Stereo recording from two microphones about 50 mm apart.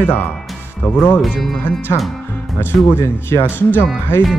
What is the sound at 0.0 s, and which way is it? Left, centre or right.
Speech, left.